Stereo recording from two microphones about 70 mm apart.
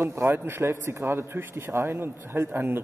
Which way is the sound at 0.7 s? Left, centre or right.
Right.